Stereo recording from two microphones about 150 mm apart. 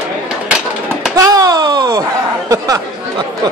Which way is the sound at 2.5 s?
20° right (ahead or behind).